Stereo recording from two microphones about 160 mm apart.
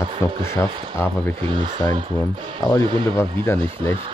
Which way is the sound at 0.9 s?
15° left (ahead or behind).